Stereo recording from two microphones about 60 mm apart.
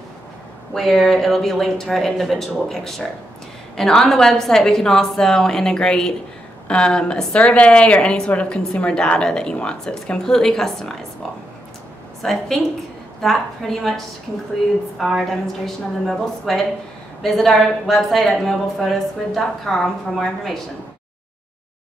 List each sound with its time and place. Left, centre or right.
0.7 s a woman's voice: centre
12.2 s speech: centre